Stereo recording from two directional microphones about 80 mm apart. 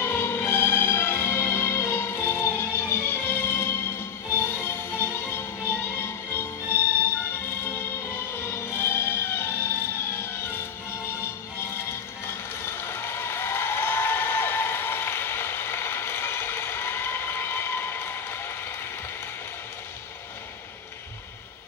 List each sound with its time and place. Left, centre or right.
0.0 s music: left